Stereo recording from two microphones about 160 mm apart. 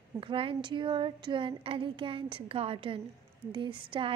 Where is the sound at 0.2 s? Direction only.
35° right (ahead or behind).